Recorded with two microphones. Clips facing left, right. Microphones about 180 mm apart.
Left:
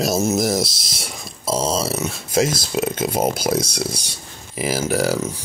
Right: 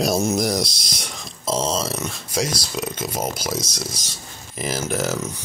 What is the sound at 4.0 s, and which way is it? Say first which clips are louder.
Speech: left 1 dB; 10° left (ahead or behind).